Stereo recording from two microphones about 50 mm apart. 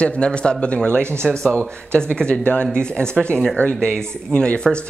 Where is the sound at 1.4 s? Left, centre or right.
Left.